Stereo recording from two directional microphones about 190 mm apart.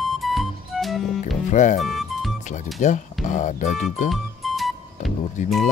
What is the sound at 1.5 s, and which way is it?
Speech, 40° left (ahead or behind).